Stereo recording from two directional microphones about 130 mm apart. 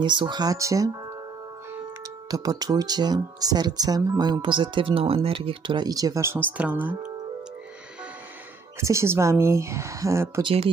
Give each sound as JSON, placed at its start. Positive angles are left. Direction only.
{"t": 0.0, "sound": "speech", "side_deg": -40}
{"t": 2.3, "sound": "speech", "side_deg": -30}
{"t": 4.4, "sound": "speech", "side_deg": -40}
{"t": 8.7, "sound": "speech", "side_deg": -20}
{"t": 10.4, "sound": "speech", "side_deg": -45}